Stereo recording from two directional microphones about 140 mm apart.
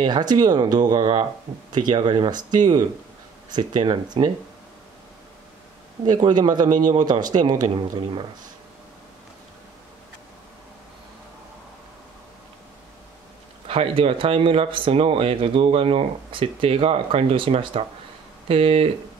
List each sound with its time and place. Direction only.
0.0 s speech: 30° right (ahead or behind)
6.0 s speech: 30° right (ahead or behind)
13.7 s speech: 45° right (ahead or behind)